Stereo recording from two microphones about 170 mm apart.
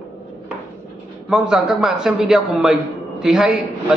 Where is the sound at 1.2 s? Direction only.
5° right (ahead or behind).